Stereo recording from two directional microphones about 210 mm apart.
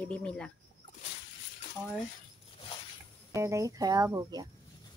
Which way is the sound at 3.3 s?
15° right (ahead or behind).